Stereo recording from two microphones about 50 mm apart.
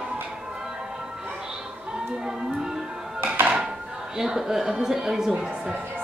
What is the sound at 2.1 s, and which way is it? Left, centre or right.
Music, centre.